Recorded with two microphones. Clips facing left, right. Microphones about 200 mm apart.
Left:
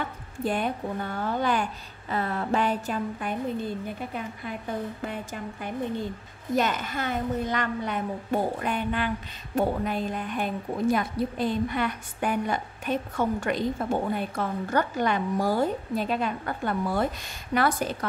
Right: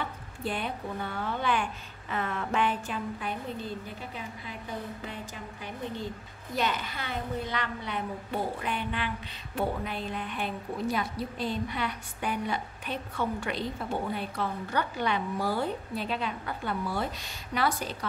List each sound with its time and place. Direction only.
0.4 s a woman's voice: 45° left (ahead or behind)